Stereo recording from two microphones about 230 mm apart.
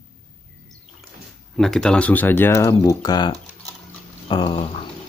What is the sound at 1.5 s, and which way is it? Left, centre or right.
Speech, centre.